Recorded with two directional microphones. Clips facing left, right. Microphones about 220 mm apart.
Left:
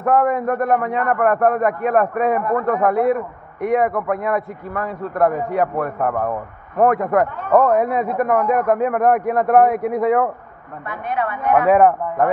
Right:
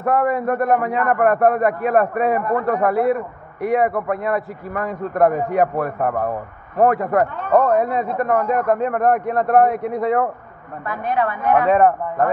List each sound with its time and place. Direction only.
0.0 s a man's voice: 5° right (ahead or behind)
4.8 s a man's voice: 20° right (ahead or behind); by 7.2 s centre (ahead or behind)
7.9 s a man's voice: 10° left (ahead or behind)
10.9 s speech: 35° right (ahead or behind)
11.7 s a man's voice: 10° left (ahead or behind)